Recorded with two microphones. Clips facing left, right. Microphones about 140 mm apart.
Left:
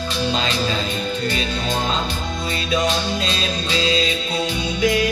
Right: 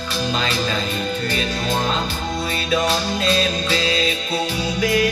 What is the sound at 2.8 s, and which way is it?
Music, 40° right (ahead or behind).